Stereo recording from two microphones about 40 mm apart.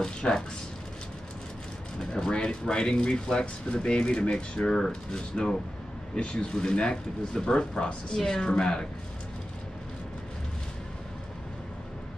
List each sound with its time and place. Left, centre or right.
0.0 s speech: centre
2.0 s speech: centre